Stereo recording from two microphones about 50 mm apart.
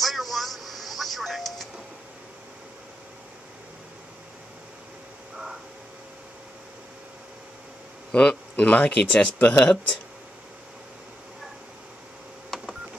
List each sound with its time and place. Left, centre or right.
0.0 s music: centre
8.1 s a man's voice: left
12.5 s telephone dialing: centre